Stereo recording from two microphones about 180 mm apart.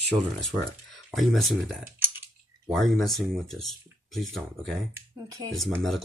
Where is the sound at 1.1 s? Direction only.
Centre (ahead or behind).